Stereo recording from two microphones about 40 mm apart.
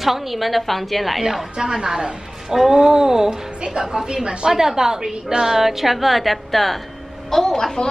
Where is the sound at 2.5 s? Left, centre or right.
Centre; by 4.6 s right.